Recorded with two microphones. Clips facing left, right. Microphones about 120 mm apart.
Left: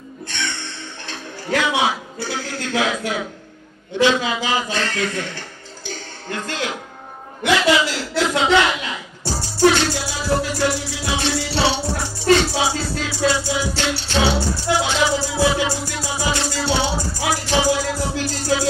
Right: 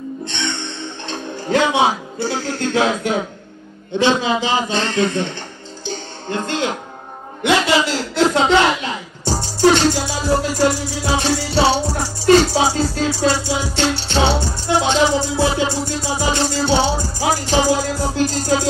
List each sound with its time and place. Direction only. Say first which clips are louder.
0.3 s music: right 1 dB; 25° right (ahead or behind)
1.0 s a man's voice: right 6 dB; 30° right (ahead or behind)
5.9 s a sound: right 4 dB; 25° right (ahead or behind)
7.4 s speech: right 1 dB; 35° right (ahead or behind)